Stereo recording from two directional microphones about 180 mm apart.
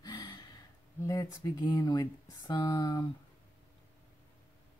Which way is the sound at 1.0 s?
20° left (ahead or behind).